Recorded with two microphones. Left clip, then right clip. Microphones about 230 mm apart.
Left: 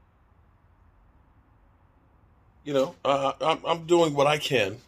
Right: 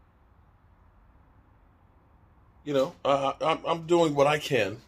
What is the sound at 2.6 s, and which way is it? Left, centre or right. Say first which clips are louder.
A man's voice: left 1 dB; left.